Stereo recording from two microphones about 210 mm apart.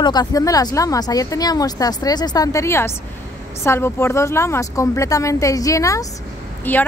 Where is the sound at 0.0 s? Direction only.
20° left (ahead or behind).